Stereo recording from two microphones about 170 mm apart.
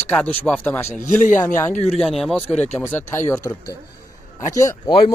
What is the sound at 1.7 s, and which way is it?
Speech, 40° left (ahead or behind).